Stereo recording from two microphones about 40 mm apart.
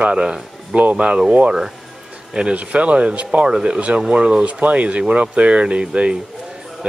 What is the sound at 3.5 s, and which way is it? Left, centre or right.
Speech, centre.